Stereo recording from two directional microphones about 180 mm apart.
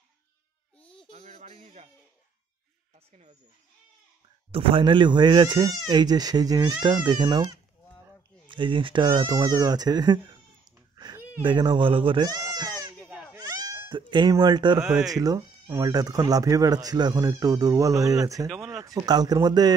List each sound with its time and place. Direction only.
1.1 s a sound: 35° right (ahead or behind)
3.1 s speech: 40° right (ahead or behind)
4.5 s speech: 30° right (ahead or behind)
8.5 s speech: 25° right (ahead or behind)
11.4 s speech: 25° right (ahead or behind)
13.1 s baby cry: 5° right (ahead or behind)
13.4 s cat: 20° right (ahead or behind)
14.8 s speech: 5° right (ahead or behind)
15.0 s speech: 20° right (ahead or behind)
18.5 s a sound: centre (ahead or behind)
18.8 s speech: 20° right (ahead or behind)